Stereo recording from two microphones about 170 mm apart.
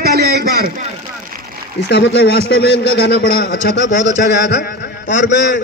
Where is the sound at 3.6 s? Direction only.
90° left.